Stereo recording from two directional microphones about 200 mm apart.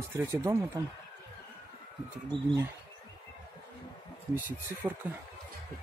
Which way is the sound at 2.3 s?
25° right (ahead or behind).